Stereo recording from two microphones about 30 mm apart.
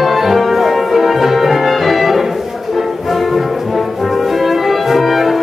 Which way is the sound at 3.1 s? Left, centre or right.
Centre.